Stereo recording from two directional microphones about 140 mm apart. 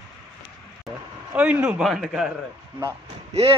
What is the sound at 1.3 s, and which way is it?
A man's voice, 10° right (ahead or behind).